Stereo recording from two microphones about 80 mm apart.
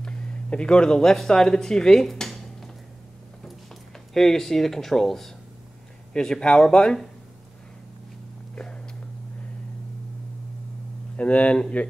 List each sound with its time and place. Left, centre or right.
0.0 s speech: centre
4.1 s speech: centre
8.5 s a sound: centre
11.1 s speech: centre